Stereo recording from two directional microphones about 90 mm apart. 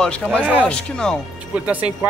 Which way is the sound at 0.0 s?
10° left (ahead or behind).